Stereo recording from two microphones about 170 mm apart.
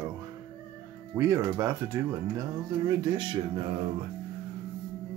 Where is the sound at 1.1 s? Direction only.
15° right (ahead or behind).